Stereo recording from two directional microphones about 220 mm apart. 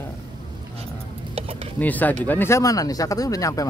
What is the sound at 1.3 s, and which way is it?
Speech, 25° right (ahead or behind).